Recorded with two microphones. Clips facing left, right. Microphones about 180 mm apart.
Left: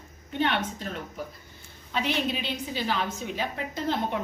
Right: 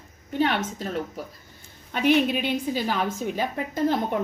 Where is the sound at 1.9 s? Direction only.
55° right (ahead or behind).